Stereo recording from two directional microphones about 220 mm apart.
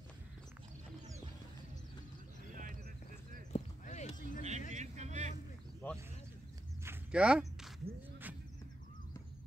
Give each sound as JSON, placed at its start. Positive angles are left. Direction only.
{"t": 3.5, "sound": "clip-clop", "side_deg": 30}
{"t": 4.4, "sound": "vehicle", "side_deg": -30}
{"t": 5.8, "sound": "a sound", "side_deg": 10}
{"t": 6.8, "sound": "walk", "side_deg": -5}